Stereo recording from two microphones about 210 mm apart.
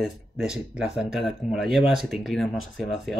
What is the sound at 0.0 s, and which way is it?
Speech, centre (ahead or behind).